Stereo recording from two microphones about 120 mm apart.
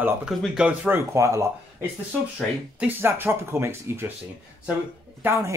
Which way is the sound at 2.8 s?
20° right (ahead or behind).